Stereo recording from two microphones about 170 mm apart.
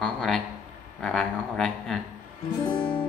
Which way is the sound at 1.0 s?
5° left (ahead or behind).